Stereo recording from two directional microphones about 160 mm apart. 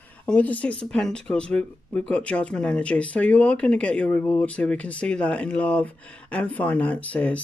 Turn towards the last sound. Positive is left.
turn(degrees=10)  # may be behind; listen again after turning